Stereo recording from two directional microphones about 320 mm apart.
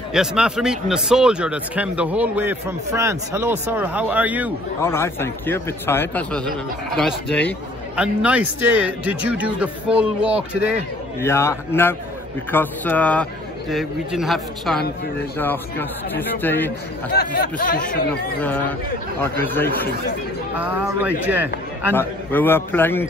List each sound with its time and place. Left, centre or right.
0.1 s speech: centre
4.8 s a man's voice: centre
11.1 s a man's voice: centre
17.1 s speech: left
18.4 s a man's voice: centre
20.5 s speech: centre
21.9 s a man's voice: centre